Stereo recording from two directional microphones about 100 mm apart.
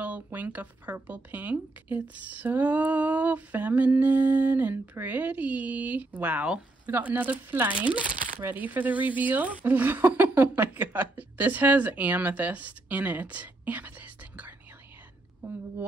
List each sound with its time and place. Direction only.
0.0 s speech: 15° right (ahead or behind)